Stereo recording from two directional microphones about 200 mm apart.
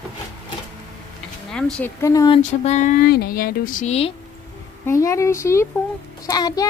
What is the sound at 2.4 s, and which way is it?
Speech, 35° left (ahead or behind).